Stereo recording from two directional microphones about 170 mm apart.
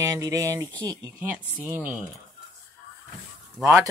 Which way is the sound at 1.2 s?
10° right (ahead or behind).